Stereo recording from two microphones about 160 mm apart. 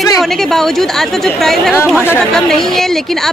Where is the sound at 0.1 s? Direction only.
Centre (ahead or behind).